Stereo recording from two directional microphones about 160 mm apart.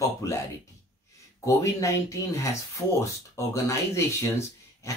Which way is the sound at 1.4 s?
20° left (ahead or behind).